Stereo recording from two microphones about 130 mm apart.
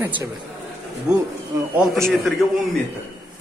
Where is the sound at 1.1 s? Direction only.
25° right (ahead or behind).